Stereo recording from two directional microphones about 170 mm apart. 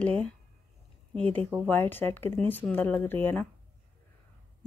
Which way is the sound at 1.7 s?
10° left (ahead or behind).